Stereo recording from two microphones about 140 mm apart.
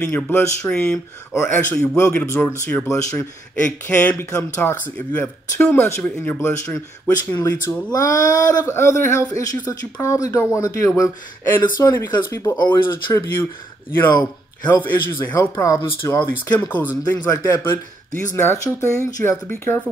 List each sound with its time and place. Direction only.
0.0 s speech: 15° left (ahead or behind)
14.7 s speech: 15° left (ahead or behind)
15.5 s speech: 25° left (ahead or behind)